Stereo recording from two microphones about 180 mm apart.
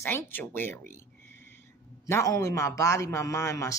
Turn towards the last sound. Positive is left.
turn(degrees=15)  # may be behind; listen again after turning